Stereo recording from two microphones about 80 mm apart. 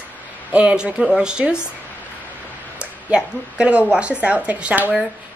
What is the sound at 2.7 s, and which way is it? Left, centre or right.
A woman's voice, centre.